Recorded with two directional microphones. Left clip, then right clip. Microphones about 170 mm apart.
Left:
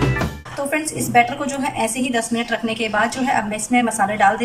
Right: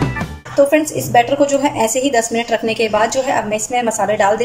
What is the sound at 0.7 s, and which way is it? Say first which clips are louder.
A woman's voice: right 7 dB; 30° right (ahead or behind).